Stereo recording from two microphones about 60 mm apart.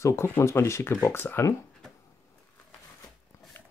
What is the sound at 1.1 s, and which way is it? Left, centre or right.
Speech, left.